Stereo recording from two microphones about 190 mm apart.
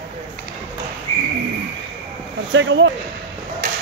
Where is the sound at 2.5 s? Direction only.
75° right (ahead or behind).